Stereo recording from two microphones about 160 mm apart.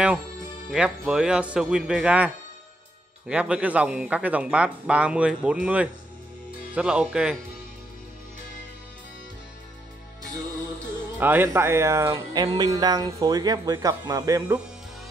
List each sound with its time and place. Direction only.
0.7 s a man's voice: 5° right (ahead or behind)
11.1 s speech: 15° right (ahead or behind)